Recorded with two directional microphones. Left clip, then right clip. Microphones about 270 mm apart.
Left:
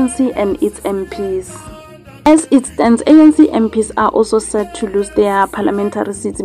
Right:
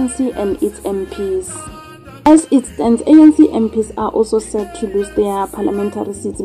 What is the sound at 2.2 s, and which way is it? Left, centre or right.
A woman's voice, centre.